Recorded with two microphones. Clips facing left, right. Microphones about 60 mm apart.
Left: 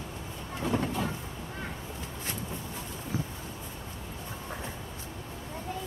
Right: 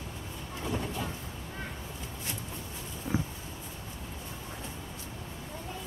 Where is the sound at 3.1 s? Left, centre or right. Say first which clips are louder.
Right 2 dB; right.